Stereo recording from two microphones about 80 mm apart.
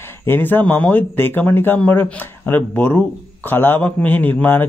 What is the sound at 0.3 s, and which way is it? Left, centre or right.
A man's voice, left.